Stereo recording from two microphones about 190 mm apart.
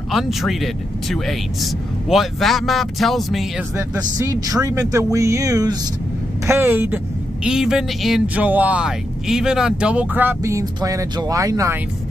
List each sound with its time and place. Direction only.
0.1 s speech: centre (ahead or behind)
4.2 s speech: 20° right (ahead or behind)